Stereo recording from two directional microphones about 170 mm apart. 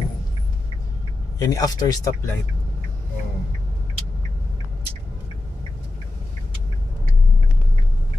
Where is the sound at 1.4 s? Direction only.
20° left (ahead or behind).